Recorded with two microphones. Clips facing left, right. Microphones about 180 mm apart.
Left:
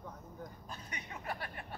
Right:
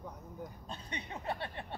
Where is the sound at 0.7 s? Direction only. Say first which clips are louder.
Right 4 dB; 25° right (ahead or behind).